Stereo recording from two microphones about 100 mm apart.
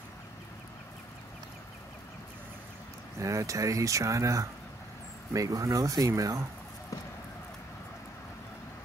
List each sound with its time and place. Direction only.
3.2 s speech: 30° right (ahead or behind)